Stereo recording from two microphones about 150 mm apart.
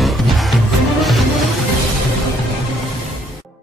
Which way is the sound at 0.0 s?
Centre (ahead or behind).